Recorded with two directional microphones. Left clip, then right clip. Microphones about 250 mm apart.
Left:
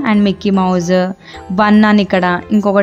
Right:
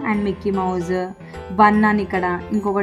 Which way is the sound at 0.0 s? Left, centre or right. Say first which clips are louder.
Left 7 dB; left.